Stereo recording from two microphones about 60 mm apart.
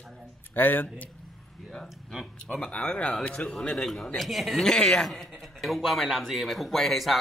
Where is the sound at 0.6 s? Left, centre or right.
Left.